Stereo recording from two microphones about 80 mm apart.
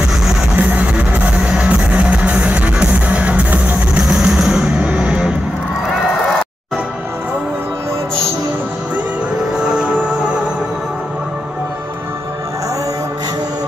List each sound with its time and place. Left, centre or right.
0.6 s music: centre
4.0 s music: centre
9.8 s music: centre